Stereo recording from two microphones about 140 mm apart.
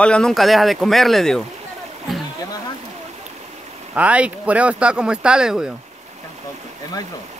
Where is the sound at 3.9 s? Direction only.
10° right (ahead or behind).